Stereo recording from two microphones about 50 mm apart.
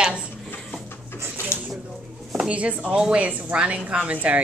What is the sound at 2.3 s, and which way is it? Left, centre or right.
A woman's voice, right.